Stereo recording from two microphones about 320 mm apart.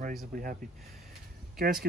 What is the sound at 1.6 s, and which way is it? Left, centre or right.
Speech, right.